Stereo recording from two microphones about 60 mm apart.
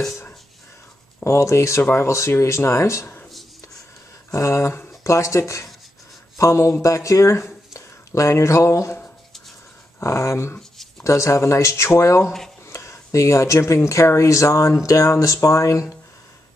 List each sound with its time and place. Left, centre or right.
1.2 s speech: left
4.3 s a sound: left
4.6 s speech: left
10.0 s speech: left